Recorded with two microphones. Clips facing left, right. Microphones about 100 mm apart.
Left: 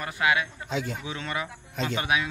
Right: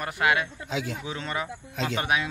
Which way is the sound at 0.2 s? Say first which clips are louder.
Right 1 dB; 45° right (ahead or behind).